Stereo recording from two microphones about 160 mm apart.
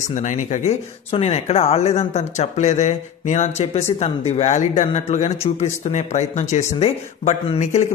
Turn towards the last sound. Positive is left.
turn(degrees=45)  # may be behind; listen again after turning